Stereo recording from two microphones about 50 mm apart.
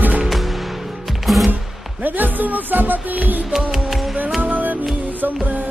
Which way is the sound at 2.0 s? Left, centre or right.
Right.